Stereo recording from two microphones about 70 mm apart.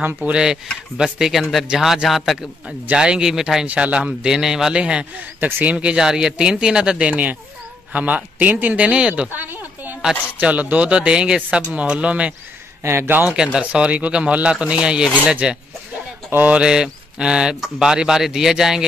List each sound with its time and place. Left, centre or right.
0.0 s a man's voice: right
0.9 s a man's voice: centre
2.9 s speech: centre
3.6 s a man's voice: centre
9.3 s a sound: right
10.4 s speech: right
12.8 s a man's voice: right
13.2 s speech: centre
16.3 s a sound: right
16.5 s speech: centre